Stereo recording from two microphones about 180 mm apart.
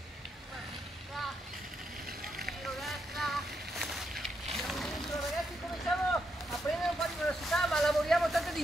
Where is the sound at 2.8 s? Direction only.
Centre (ahead or behind).